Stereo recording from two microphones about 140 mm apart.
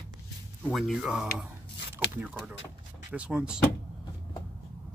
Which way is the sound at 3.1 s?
10° right (ahead or behind).